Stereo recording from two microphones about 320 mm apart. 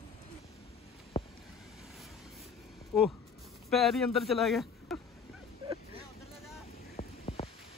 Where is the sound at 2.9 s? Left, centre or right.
Centre.